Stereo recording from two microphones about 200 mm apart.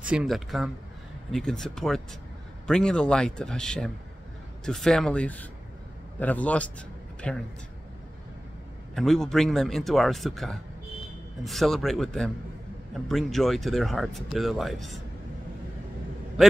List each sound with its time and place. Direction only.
0.0 s a man's voice: 5° right (ahead or behind)
8.9 s speech: centre (ahead or behind)